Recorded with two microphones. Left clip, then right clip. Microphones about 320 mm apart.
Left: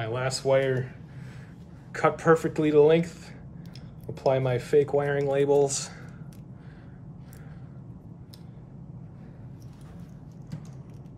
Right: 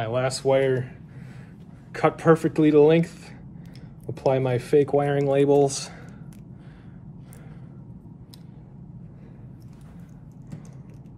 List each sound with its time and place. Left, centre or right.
0.0 s speech: centre
1.9 s speech: centre